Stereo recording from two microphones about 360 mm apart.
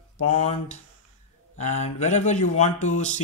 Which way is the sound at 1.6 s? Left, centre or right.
Centre.